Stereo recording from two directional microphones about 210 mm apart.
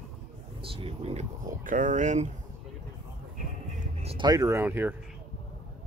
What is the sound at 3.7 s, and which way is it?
Speech, 30° right (ahead or behind).